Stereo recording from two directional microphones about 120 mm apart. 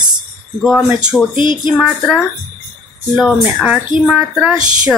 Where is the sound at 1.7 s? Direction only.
Centre (ahead or behind).